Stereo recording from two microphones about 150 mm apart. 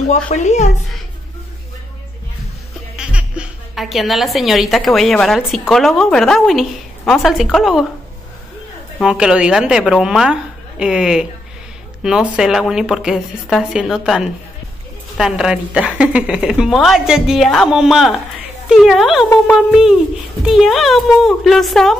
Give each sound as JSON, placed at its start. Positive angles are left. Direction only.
{"t": 0.3, "sound": "speech", "side_deg": 50}
{"t": 3.0, "sound": "speech", "side_deg": -5}
{"t": 9.0, "sound": "a woman's voice", "side_deg": -5}
{"t": 19.2, "sound": "speech", "side_deg": 15}
{"t": 19.7, "sound": "a woman's voice", "side_deg": -5}